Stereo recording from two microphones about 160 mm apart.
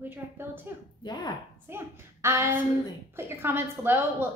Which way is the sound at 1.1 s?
25° left (ahead or behind).